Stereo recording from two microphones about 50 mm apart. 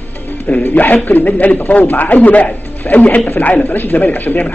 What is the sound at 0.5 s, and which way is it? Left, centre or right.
A man's voice, left.